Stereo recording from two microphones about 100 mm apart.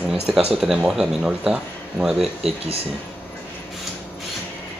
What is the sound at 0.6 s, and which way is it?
Speech, 5° right (ahead or behind).